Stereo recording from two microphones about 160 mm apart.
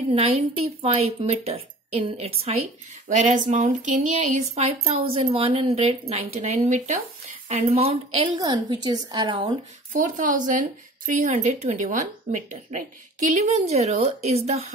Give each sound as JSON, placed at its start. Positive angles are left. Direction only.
{"t": 0.1, "sound": "speech", "side_deg": -40}
{"t": 3.1, "sound": "speech", "side_deg": -50}
{"t": 9.9, "sound": "speech", "side_deg": -55}